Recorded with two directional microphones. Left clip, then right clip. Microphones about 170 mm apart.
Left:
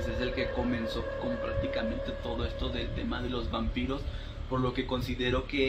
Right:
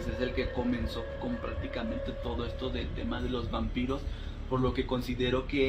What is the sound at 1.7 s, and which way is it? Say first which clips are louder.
A man's voice: left 3 dB; centre (ahead or behind).